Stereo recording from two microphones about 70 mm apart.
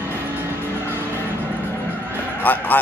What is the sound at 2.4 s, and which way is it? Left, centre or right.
Speech, left.